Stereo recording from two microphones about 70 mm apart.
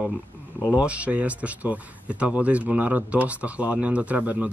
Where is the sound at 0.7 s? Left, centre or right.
Centre.